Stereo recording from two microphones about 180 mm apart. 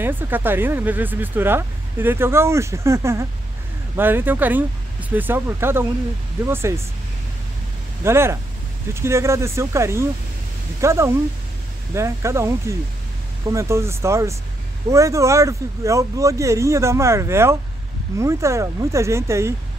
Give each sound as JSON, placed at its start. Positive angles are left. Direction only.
{"t": 0.0, "sound": "speech", "side_deg": -10}
{"t": 8.0, "sound": "speech", "side_deg": -15}